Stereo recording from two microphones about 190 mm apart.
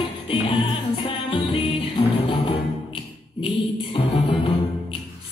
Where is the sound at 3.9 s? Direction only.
25° left (ahead or behind).